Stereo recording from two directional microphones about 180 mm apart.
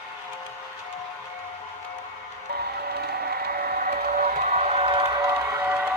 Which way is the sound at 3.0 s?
60° right (ahead or behind).